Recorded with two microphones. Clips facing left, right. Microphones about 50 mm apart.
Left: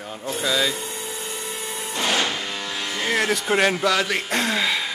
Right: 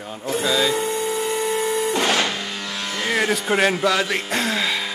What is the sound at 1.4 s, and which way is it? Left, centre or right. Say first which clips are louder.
Printer: right 10 dB; right.